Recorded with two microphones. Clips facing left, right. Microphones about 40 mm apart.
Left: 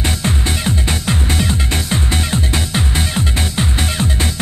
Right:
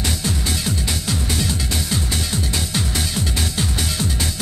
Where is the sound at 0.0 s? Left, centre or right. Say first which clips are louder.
Left 4 dB; left.